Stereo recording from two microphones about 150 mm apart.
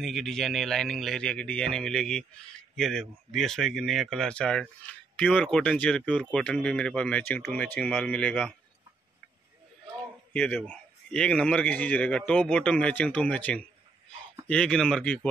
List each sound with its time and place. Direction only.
0.0 s speech: centre (ahead or behind)
10.3 s speech: 10° left (ahead or behind)